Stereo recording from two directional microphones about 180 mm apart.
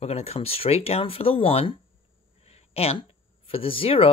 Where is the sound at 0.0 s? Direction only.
35° left (ahead or behind).